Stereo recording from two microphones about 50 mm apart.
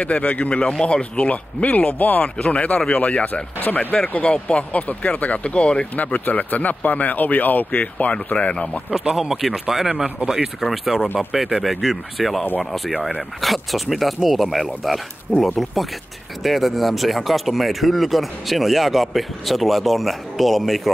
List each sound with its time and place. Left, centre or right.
0.0 s speech: left
2.2 s speech: centre
3.5 s speech: left
4.1 s speech: left
5.9 s speech: left
9.1 s speech: centre